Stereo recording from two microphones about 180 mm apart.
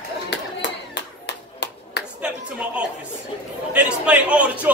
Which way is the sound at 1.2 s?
75° left (ahead or behind).